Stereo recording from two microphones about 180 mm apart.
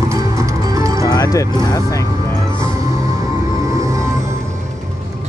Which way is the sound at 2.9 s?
20° right (ahead or behind).